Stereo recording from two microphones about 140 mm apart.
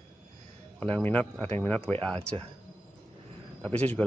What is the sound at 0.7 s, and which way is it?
Speech, 10° left (ahead or behind).